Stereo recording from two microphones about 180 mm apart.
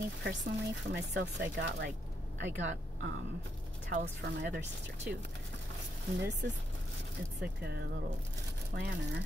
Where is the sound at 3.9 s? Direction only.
60° right (ahead or behind).